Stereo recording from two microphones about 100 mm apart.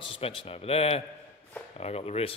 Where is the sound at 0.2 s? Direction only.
65° left (ahead or behind).